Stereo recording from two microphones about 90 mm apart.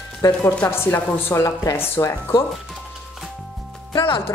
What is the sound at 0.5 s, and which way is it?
Speech, 25° left (ahead or behind).